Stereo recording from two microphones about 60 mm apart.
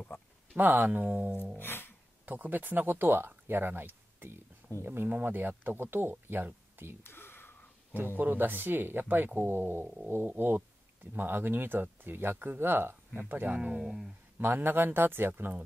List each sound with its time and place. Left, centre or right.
0.6 s speech: right
1.6 s music: left
2.2 s speech: right
7.0 s whispering: left
8.2 s speech: right
13.6 s speech: centre
14.4 s speech: right